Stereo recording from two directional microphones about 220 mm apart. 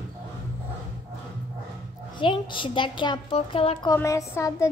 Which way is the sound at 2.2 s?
20° left (ahead or behind).